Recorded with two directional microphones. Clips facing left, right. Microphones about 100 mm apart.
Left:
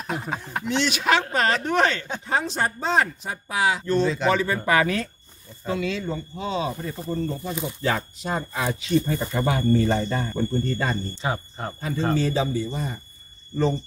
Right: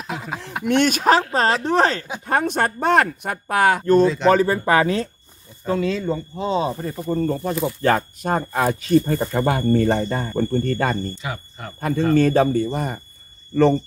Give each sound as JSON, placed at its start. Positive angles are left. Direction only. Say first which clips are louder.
{"t": 0.1, "sound": "speech", "louder": "left 1 dB", "side_deg": -90}
{"t": 0.7, "sound": "speech", "louder": "right 6 dB", "side_deg": -50}
{"t": 2.2, "sound": "speech", "louder": "right 5 dB", "side_deg": -55}
{"t": 4.0, "sound": "speech", "louder": "right 6 dB", "side_deg": 0}
{"t": 4.3, "sound": "speech", "louder": "right 5 dB", "side_deg": -40}
{"t": 7.6, "sound": "speech", "louder": "right 7 dB", "side_deg": -55}
{"t": 11.1, "sound": "speech", "louder": "left 3 dB", "side_deg": 30}
{"t": 12.2, "sound": "speech", "louder": "right 7 dB", "side_deg": -55}
{"t": 13.5, "sound": "speech", "louder": "right 7 dB", "side_deg": -75}